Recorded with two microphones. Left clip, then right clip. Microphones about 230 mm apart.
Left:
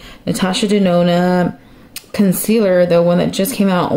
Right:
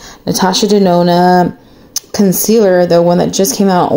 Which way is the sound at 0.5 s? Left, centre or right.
Centre.